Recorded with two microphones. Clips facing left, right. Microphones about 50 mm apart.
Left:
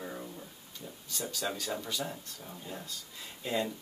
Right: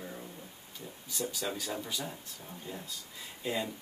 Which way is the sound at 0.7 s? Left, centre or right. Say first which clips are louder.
Right 2 dB; centre.